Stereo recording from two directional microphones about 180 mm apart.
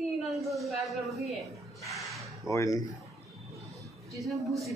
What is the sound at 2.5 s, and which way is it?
Speech, 15° left (ahead or behind).